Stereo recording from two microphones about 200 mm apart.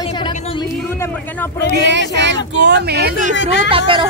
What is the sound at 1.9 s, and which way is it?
A woman's voice, 60° right (ahead or behind).